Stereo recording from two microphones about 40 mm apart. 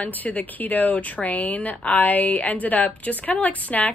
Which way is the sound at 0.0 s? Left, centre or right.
Left.